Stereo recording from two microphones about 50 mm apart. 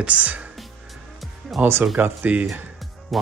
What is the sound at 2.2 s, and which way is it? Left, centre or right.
Speech, right.